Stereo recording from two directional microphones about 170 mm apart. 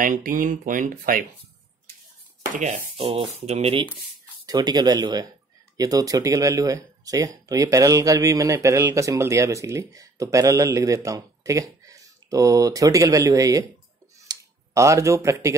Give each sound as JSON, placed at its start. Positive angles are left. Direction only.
{"t": 0.0, "sound": "speech", "side_deg": -55}
{"t": 2.5, "sound": "speech", "side_deg": -45}
{"t": 4.5, "sound": "speech", "side_deg": -25}
{"t": 14.2, "sound": "a sound", "side_deg": -20}